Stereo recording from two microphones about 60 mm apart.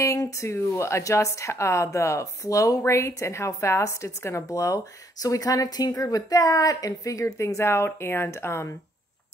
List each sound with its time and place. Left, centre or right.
0.0 s speech: left
2.8 s speech: left